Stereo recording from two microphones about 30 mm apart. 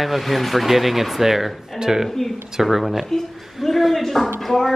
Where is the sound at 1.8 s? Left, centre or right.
Centre.